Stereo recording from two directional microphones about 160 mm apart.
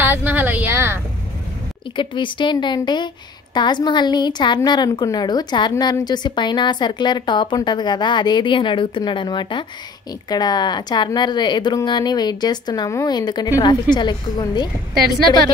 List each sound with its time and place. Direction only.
0.0 s speech: 10° right (ahead or behind)
2.0 s a woman's voice: 30° left (ahead or behind)